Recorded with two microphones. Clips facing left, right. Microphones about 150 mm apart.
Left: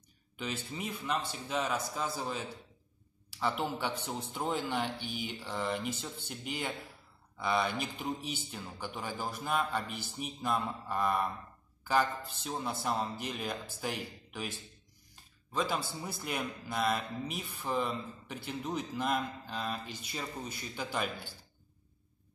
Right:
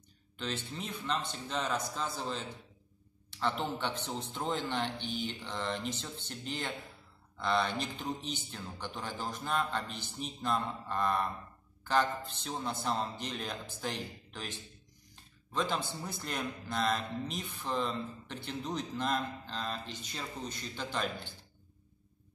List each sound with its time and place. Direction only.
0.4 s speech: 10° left (ahead or behind)
15.5 s speech: 5° left (ahead or behind)